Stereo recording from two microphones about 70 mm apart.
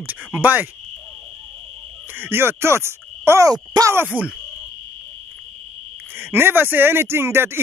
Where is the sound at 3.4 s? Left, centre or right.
Right.